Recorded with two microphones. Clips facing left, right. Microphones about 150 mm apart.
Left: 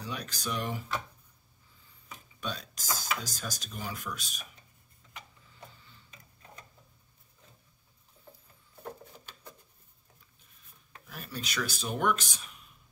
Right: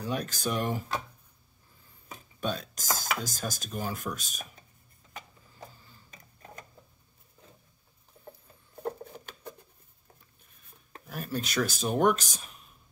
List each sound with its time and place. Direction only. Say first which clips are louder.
0.0 s speech: right 6 dB; 45° right (ahead or behind)
2.4 s speech: right 6 dB; 45° right (ahead or behind)
10.9 s speech: right 9 dB; 45° right (ahead or behind)